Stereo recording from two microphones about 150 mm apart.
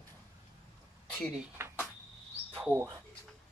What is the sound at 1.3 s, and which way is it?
Speech, 15° right (ahead or behind).